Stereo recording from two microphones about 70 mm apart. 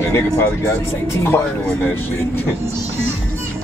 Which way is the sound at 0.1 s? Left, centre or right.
Left.